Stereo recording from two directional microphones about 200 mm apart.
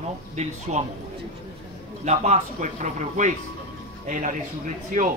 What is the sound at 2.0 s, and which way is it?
Speech, 35° right (ahead or behind).